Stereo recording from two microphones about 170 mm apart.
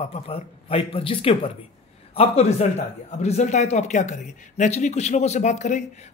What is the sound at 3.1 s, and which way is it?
A man's voice, 40° left (ahead or behind).